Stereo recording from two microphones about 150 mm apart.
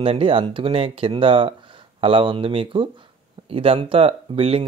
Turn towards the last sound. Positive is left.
turn(degrees=-40)  # may be behind; listen again after turning